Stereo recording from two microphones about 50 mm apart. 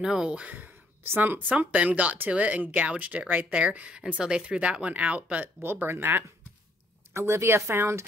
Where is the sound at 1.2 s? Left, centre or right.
Right.